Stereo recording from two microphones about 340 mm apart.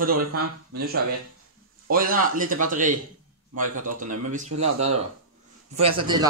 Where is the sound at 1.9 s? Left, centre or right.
Right.